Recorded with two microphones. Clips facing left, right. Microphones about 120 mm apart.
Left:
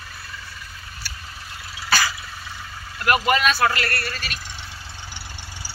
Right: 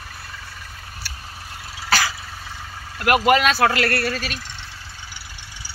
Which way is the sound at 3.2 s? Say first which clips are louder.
Right 4 dB; 90° right.